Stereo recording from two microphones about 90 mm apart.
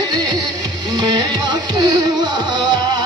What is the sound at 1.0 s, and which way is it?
Music, 50° right (ahead or behind).